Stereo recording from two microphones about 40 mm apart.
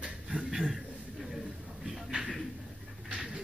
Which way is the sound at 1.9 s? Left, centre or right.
Centre.